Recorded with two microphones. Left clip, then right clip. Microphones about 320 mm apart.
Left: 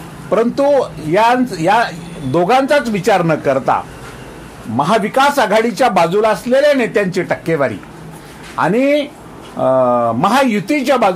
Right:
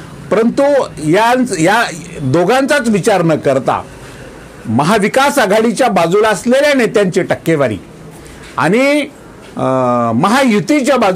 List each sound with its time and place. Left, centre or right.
0.3 s speech: right
4.7 s speech: right